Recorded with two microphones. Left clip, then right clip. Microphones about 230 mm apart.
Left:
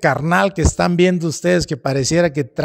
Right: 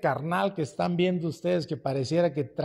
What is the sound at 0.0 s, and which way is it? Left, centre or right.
A man's voice, left.